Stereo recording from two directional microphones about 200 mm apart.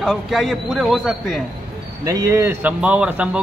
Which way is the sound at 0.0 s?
Centre (ahead or behind).